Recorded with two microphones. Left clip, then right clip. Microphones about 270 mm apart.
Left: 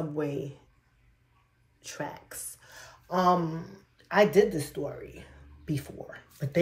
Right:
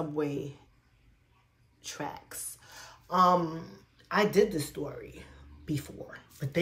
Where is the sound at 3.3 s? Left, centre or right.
Centre.